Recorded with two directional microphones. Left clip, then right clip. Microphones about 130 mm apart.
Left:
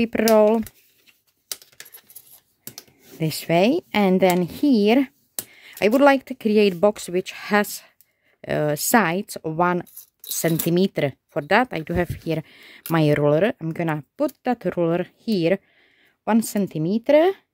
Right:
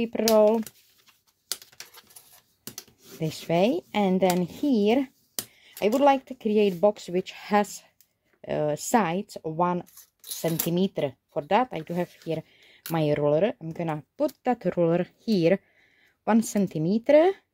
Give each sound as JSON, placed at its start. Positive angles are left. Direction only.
{"t": 0.0, "sound": "speech", "side_deg": 55}
{"t": 3.2, "sound": "speech", "side_deg": 45}
{"t": 7.2, "sound": "speech", "side_deg": 35}
{"t": 10.7, "sound": "speech", "side_deg": 65}
{"t": 12.3, "sound": "a sound", "side_deg": 45}
{"t": 12.9, "sound": "speech", "side_deg": 40}
{"t": 13.9, "sound": "speech", "side_deg": 35}